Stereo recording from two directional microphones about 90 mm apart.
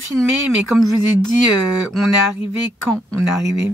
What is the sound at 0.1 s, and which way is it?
Speech, centre (ahead or behind).